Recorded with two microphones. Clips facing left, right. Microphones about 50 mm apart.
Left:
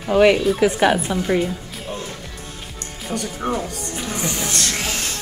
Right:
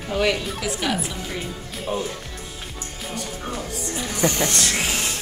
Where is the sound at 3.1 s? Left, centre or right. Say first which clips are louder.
Left 7 dB; centre.